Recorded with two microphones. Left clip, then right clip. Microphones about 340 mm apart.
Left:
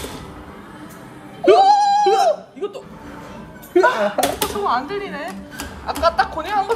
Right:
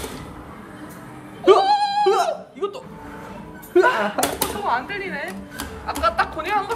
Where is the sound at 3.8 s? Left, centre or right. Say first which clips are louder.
Left 2 dB; right.